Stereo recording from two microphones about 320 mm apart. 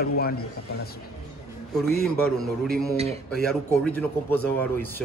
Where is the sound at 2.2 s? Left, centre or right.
Centre.